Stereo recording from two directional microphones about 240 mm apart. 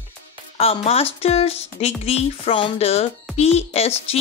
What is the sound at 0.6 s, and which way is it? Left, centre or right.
A woman's voice, left.